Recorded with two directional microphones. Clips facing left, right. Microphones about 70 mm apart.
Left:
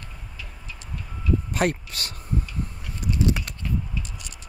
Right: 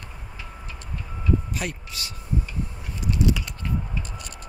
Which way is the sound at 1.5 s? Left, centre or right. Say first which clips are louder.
Left 7 dB; left.